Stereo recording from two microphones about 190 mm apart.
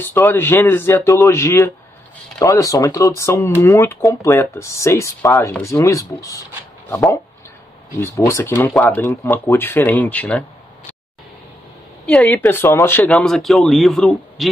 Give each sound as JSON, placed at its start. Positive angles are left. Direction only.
{"t": 0.0, "sound": "speech", "side_deg": 10}
{"t": 12.1, "sound": "speech", "side_deg": 5}